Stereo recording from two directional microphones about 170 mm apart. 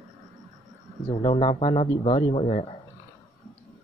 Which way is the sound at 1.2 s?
35° left (ahead or behind).